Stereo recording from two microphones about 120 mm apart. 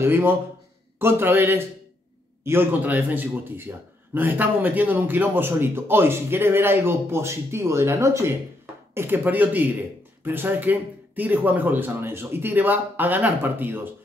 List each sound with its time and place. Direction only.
0.0 s a man's voice: 20° right (ahead or behind)